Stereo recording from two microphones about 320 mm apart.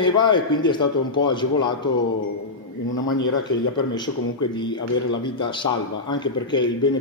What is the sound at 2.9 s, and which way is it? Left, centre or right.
Speech, left.